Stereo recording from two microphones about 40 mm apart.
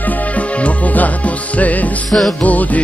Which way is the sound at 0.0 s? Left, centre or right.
Left.